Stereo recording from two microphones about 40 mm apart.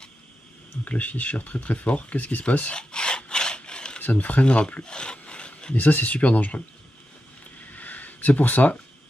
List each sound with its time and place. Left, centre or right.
0.8 s speech: left
2.8 s rub: left
4.0 s speech: left
4.5 s speech: left
4.8 s a sound: left
5.8 s speech: left
7.6 s a sound: left